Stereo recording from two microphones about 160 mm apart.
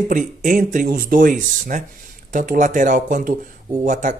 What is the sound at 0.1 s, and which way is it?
Speech, 55° right (ahead or behind).